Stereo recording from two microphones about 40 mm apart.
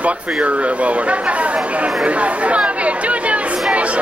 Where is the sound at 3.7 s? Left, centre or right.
Right.